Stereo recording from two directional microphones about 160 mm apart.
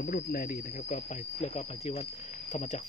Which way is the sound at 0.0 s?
65° left (ahead or behind).